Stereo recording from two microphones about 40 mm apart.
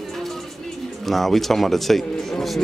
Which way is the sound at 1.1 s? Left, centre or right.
Centre.